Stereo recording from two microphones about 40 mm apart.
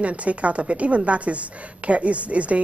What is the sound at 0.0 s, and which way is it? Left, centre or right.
A woman's voice, right.